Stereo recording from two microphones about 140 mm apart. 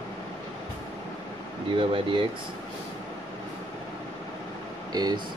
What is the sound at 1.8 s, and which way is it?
Speech, 40° right (ahead or behind).